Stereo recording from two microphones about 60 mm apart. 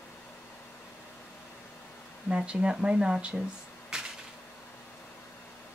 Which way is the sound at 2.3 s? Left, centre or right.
Centre.